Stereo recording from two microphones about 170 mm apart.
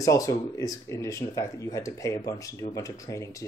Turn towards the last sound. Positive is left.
turn(degrees=20)  # may be behind; listen again after turning